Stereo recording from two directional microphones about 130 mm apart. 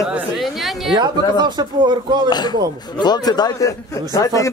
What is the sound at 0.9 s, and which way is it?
Speech, 35° right (ahead or behind).